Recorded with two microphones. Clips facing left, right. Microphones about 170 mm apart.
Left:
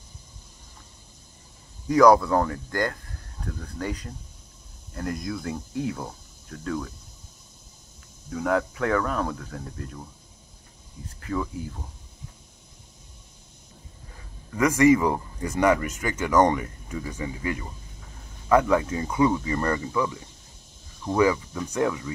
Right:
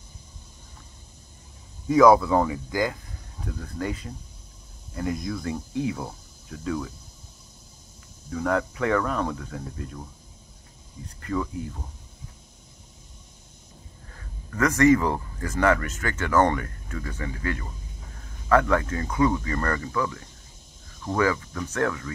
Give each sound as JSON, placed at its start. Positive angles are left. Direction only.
{"t": 1.9, "sound": "speech", "side_deg": 0}
{"t": 8.3, "sound": "speech", "side_deg": 0}
{"t": 14.1, "sound": "speech", "side_deg": 10}